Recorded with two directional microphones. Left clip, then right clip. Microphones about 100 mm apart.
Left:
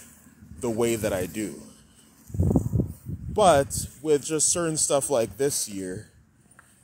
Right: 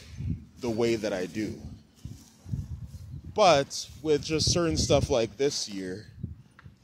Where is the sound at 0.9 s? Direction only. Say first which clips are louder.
Left 2 dB; 65° left (ahead or behind).